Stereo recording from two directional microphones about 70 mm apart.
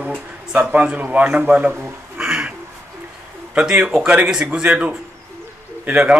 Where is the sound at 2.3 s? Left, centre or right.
Centre.